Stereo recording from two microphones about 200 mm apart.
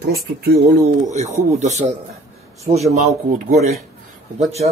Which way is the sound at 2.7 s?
35° right (ahead or behind).